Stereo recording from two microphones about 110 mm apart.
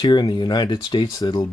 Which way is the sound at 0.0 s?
40° left (ahead or behind).